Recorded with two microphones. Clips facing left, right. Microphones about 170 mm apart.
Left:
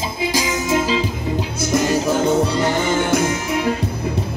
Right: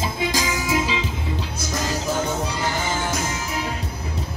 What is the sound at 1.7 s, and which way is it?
Music, 60° left (ahead or behind).